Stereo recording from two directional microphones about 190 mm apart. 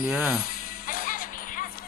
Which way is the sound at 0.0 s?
5° right (ahead or behind).